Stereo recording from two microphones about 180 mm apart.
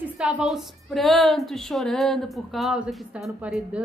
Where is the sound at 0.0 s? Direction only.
5° right (ahead or behind).